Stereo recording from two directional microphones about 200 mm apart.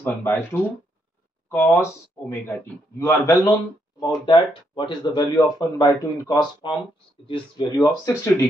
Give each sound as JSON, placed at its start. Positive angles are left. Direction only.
{"t": 0.0, "sound": "speech", "side_deg": 10}